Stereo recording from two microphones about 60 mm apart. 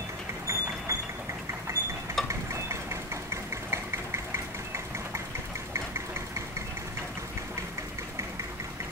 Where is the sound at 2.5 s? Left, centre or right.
Right.